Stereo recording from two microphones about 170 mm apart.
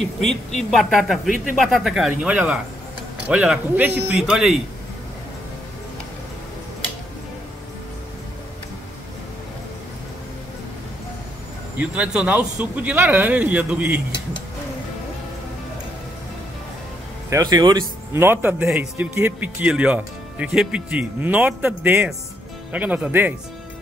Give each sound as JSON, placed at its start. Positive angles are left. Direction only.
{"t": 0.0, "sound": "speech", "side_deg": 5}
{"t": 11.8, "sound": "speech", "side_deg": -5}
{"t": 17.3, "sound": "speech", "side_deg": -20}